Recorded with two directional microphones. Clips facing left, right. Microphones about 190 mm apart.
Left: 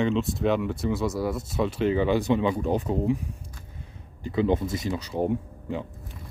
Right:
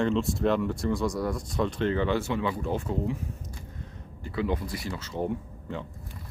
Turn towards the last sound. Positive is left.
turn(degrees=15)  # may be behind; listen again after turning